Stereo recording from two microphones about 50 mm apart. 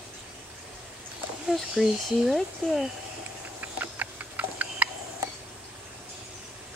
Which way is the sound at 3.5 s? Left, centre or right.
Right.